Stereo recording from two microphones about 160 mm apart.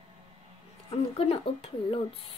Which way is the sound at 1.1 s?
35° left (ahead or behind).